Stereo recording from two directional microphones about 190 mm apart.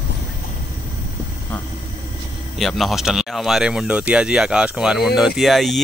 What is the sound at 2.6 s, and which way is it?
Speech, centre (ahead or behind).